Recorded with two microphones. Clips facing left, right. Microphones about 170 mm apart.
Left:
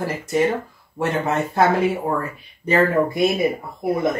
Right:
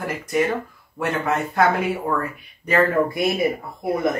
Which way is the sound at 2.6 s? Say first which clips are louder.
Left 1 dB; 25° left (ahead or behind).